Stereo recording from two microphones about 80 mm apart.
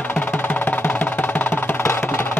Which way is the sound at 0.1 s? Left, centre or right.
Left.